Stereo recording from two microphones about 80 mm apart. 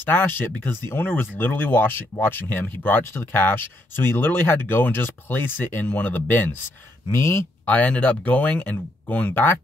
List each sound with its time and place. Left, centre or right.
0.0 s speech: left
7.6 s speech: centre